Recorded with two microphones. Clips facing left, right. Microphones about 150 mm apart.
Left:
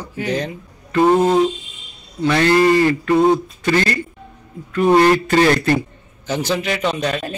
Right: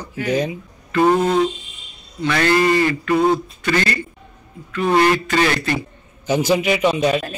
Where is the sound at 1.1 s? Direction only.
25° left (ahead or behind).